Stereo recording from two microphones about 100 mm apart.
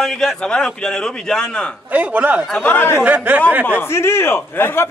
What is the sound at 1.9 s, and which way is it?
Speech, 15° right (ahead or behind).